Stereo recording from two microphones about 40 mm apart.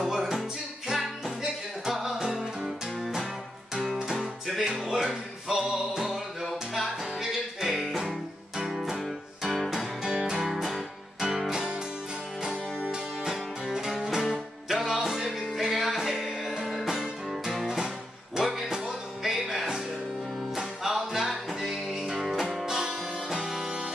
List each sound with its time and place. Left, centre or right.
0.0 s music: centre
2.0 s music: centre
3.8 s music: centre
9.7 s music: centre
11.5 s music: centre
13.7 s music: centre
21.9 s music: centre
22.7 s music: centre